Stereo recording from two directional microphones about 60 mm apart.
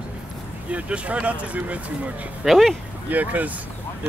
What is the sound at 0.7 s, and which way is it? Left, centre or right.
Speech, right.